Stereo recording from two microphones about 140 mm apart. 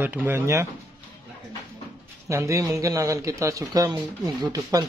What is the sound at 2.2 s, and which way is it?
A man's voice, 20° right (ahead or behind).